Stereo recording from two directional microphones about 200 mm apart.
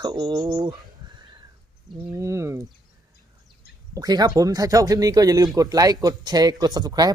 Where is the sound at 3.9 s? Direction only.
20° right (ahead or behind).